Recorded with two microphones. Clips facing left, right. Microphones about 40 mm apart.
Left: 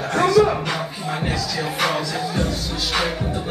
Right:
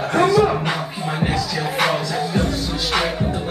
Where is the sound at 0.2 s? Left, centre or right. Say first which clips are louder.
Even; centre.